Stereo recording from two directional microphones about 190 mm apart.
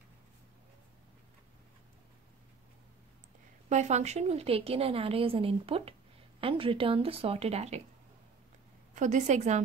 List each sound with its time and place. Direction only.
3.6 s a woman's voice: 40° right (ahead or behind)
8.9 s a woman's voice: 40° right (ahead or behind)